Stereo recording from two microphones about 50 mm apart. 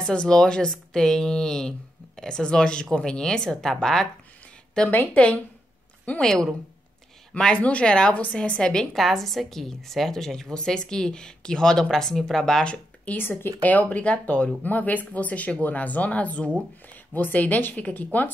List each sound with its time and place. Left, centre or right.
0.0 s speech: centre
6.2 s speech: centre
8.9 s speech: centre
13.1 s speech: left
13.6 s speech: left